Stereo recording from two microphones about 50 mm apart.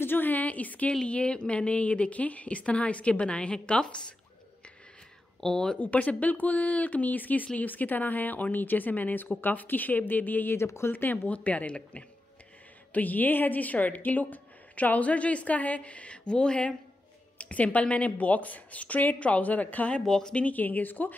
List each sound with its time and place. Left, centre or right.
0.0 s a woman's voice: left
5.4 s speech: centre
5.8 s a woman's voice: left
10.6 s speech: left
10.9 s a woman's voice: left
11.2 s a woman's voice: left
20.1 s speech: centre
20.3 s a woman's voice: left